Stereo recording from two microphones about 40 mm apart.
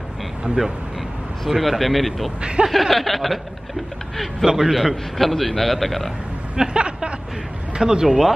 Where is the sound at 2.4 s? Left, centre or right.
Right.